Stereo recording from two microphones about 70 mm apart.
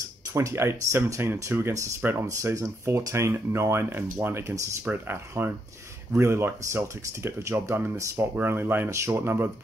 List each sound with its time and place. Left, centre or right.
0.3 s speech: right
0.6 s speech: right
1.7 s speech: right
4.8 s speech: right